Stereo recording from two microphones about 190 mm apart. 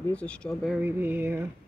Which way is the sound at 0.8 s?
10° right (ahead or behind).